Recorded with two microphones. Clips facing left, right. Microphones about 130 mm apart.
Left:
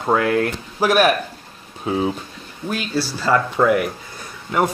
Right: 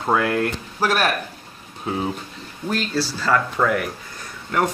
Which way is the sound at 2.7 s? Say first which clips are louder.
Even; 10° left (ahead or behind).